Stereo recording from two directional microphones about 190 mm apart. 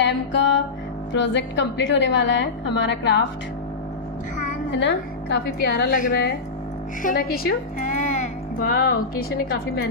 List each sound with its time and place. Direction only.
0.0 s music: 70° left (ahead or behind)
1.1 s a woman's voice: 70° left (ahead or behind)
4.6 s a woman's voice: 65° left (ahead or behind)
5.9 s speech: 45° left (ahead or behind)
7.0 s music: 50° left (ahead or behind)